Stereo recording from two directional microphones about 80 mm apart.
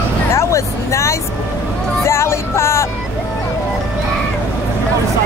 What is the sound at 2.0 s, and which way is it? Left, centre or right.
Music, left.